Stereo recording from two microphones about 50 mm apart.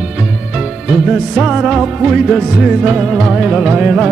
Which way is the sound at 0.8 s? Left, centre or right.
Centre.